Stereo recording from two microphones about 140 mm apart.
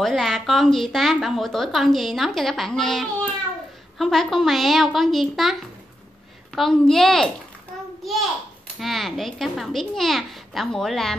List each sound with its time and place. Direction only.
0.0 s speech: centre (ahead or behind)
8.7 s speech: centre (ahead or behind)